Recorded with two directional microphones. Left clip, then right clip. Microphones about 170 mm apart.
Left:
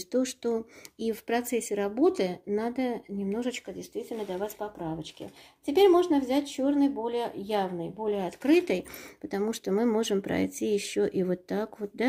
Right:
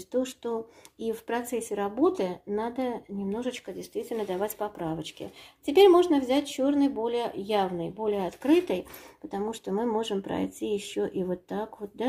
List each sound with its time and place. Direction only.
0.1 s speech: 40° left (ahead or behind); by 3.8 s 20° left (ahead or behind)
3.9 s speech: centre (ahead or behind); by 8.8 s 30° left (ahead or behind)
9.3 s speech: 45° left (ahead or behind)